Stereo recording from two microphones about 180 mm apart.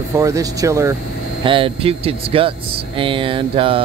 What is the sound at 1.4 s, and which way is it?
Speech, 30° right (ahead or behind).